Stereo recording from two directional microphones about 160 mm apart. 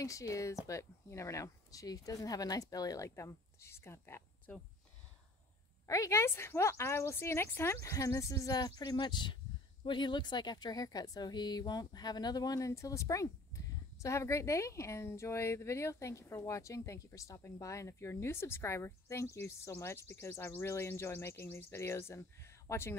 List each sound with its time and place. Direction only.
0.0 s speech: 20° left (ahead or behind)
5.9 s a woman's voice: 20° left (ahead or behind)